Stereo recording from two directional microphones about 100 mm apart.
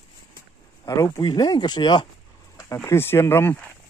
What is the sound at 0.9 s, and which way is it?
Speech, 35° left (ahead or behind).